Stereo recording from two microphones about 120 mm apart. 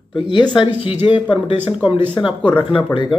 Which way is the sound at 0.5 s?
45° left (ahead or behind).